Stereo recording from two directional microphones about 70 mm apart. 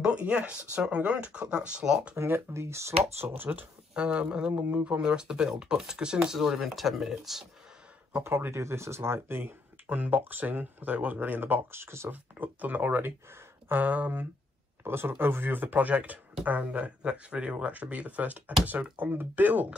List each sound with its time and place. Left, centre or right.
0.0 s speech: centre
2.1 s speech: right
3.9 s speech: centre
8.2 s speech: right
12.1 s speech: right
14.8 s speech: right